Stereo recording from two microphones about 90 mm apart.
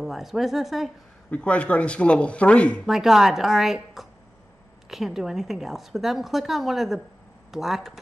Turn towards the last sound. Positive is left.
turn(degrees=-5)  # may be behind; listen again after turning